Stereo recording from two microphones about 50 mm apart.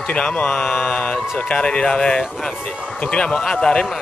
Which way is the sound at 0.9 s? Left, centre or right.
Left.